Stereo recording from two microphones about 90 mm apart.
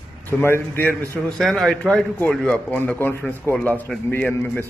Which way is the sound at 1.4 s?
5° left (ahead or behind).